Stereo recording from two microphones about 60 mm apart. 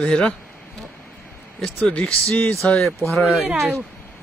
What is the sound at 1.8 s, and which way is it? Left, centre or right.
Speech, left.